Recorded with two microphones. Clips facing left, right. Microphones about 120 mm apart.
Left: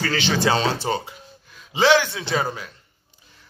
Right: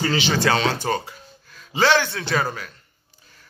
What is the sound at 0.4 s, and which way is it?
A man's voice, 30° left (ahead or behind).